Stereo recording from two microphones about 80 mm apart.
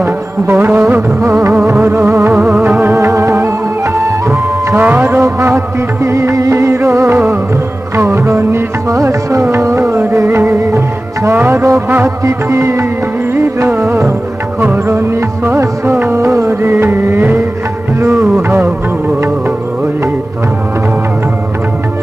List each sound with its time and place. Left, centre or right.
0.0 s music: right
2.3 s music: centre
2.8 s music: right
4.8 s music: right
5.2 s music: right
18.5 s music: right